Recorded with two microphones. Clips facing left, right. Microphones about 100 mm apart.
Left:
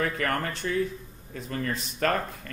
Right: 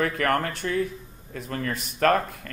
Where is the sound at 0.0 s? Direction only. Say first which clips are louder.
Right 4 dB; 65° right (ahead or behind).